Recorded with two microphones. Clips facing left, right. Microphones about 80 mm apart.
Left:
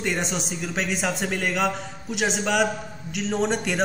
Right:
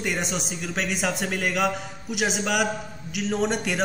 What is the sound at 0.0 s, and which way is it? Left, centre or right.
A man's voice, centre.